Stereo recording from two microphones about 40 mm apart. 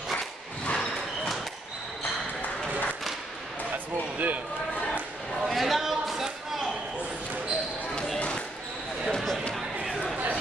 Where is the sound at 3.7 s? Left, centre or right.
Right.